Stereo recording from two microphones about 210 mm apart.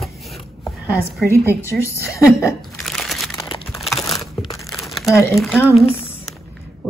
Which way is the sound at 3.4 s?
25° left (ahead or behind).